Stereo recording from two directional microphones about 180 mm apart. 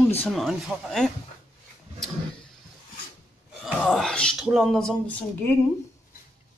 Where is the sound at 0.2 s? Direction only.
Centre (ahead or behind).